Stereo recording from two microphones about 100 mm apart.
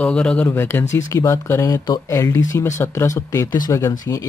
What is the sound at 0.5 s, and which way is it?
Speech, 20° left (ahead or behind).